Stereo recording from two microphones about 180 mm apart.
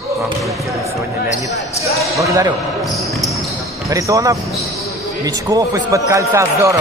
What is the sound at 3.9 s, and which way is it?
Speech, 20° right (ahead or behind).